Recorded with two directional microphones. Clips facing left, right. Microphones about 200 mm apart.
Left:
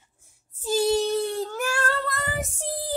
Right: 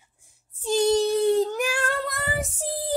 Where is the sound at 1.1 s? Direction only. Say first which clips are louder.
Right 5 dB; 15° right (ahead or behind).